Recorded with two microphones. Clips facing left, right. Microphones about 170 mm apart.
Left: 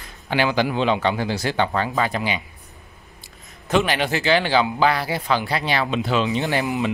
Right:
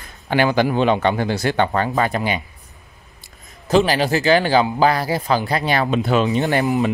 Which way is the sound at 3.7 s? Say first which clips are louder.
Right 4 dB; 35° right (ahead or behind).